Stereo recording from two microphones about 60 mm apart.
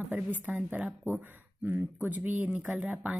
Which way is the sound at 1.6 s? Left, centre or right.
Right.